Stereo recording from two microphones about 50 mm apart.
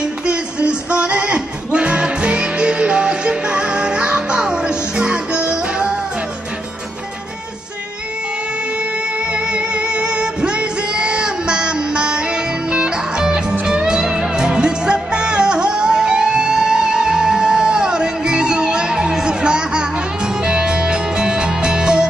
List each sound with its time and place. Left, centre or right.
0.3 s music: centre
9.3 s music: right